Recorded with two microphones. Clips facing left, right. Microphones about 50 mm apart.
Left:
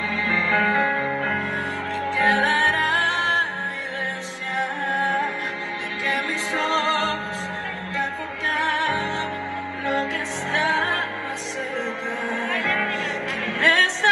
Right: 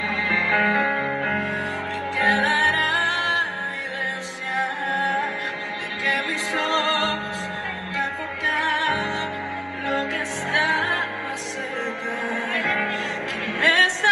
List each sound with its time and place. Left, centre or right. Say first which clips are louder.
0.1 s music: even; right
2.1 s music: left 1 dB; left
4.8 s music: left 3 dB; left
12.5 s music: even; left